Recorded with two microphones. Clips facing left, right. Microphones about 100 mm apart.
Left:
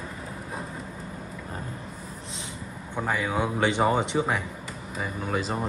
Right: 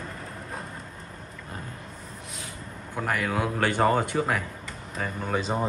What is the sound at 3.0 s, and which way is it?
Speech, 15° left (ahead or behind).